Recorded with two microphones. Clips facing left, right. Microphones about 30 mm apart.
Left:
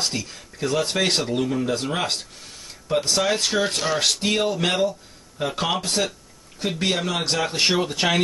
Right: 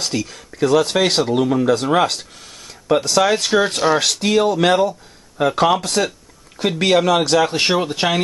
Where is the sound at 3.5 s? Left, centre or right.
Centre.